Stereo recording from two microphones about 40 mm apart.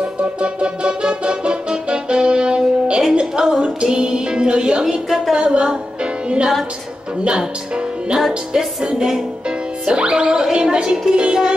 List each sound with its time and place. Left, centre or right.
0.0 s music: right
3.2 s a woman's voice: right
6.2 s music: right
7.2 s speech: right
8.5 s music: centre
9.8 s a woman's voice: right